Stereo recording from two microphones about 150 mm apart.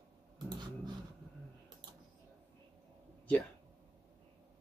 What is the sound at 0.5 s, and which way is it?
Dog, 30° right (ahead or behind).